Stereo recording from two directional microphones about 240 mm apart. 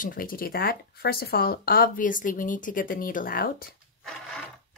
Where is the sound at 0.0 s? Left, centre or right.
Left.